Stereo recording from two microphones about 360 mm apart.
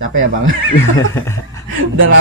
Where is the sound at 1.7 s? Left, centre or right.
Right.